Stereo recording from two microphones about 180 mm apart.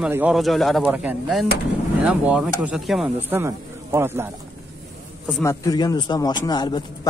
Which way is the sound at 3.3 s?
15° right (ahead or behind).